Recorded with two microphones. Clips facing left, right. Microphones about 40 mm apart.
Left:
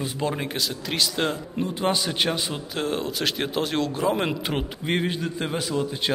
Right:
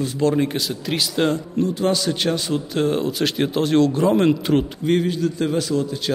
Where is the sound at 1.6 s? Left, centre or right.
Centre.